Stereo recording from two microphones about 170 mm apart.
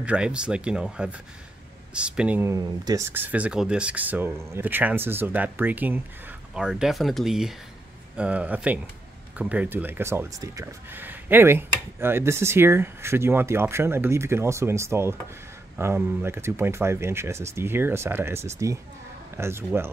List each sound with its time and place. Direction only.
0.0 s speech: 5° right (ahead or behind)